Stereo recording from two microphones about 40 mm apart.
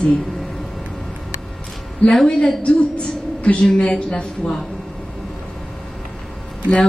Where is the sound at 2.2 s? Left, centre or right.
Centre.